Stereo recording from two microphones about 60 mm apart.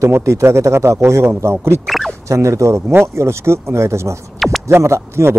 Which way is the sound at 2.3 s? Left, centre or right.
Right.